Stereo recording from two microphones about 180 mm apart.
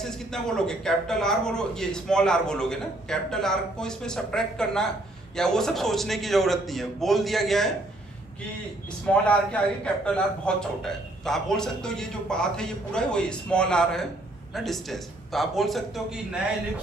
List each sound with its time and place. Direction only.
0.0 s a man's voice: 5° left (ahead or behind)
9.0 s a man's voice: 5° left (ahead or behind)